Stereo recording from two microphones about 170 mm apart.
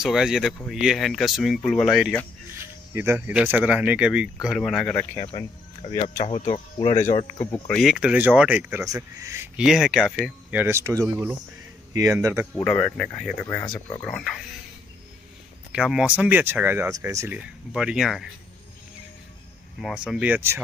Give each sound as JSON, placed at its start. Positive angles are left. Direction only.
{"t": 0.0, "sound": "speech", "side_deg": 0}
{"t": 2.6, "sound": "speech", "side_deg": -15}
{"t": 5.1, "sound": "speech", "side_deg": 35}
{"t": 7.6, "sound": "speech", "side_deg": 0}
{"t": 9.6, "sound": "speech", "side_deg": -5}
{"t": 12.6, "sound": "speech", "side_deg": 5}
{"t": 15.7, "sound": "speech", "side_deg": -5}
{"t": 17.4, "sound": "speech", "side_deg": -5}
{"t": 19.8, "sound": "speech", "side_deg": -5}